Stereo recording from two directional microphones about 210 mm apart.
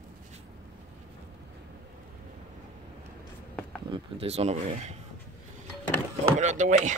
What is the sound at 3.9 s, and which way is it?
Speech, 30° right (ahead or behind).